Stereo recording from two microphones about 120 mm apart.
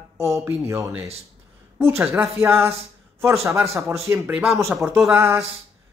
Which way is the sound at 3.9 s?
25° right (ahead or behind).